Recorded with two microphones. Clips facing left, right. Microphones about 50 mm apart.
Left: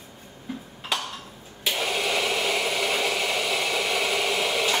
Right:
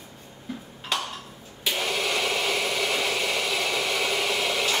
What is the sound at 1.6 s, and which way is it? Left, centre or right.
Engine, centre.